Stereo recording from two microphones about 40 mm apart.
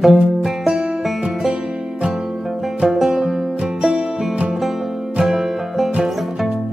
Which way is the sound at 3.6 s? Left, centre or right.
Right.